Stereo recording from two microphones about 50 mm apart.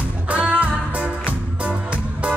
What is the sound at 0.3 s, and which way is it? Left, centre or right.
Music, right.